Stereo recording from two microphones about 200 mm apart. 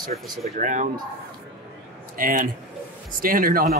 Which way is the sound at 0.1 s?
35° right (ahead or behind).